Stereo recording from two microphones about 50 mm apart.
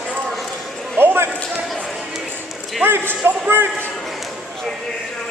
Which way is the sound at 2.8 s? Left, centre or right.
Right.